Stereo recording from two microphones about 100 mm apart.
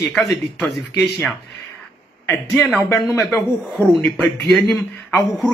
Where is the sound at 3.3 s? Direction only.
5° left (ahead or behind).